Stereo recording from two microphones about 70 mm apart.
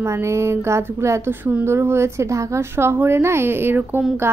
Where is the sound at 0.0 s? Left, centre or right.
Right.